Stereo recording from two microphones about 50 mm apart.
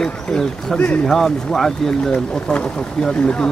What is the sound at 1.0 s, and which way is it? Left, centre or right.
Speech, centre.